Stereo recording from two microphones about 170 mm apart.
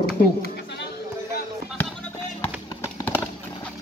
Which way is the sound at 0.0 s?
65° left (ahead or behind).